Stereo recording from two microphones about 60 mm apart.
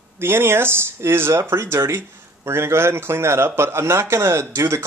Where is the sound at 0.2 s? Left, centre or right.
Right.